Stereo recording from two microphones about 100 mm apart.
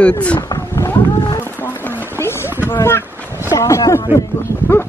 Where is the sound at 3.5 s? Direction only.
35° left (ahead or behind).